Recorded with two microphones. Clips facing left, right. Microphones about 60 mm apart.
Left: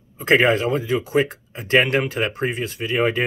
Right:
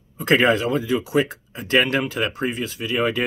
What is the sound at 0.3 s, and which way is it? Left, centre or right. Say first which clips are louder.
Speech: left 1 dB; left.